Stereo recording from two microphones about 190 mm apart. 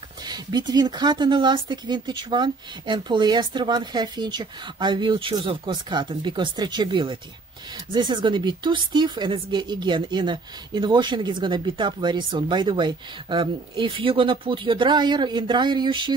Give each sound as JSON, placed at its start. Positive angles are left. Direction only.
{"t": 0.3, "sound": "speech", "side_deg": -20}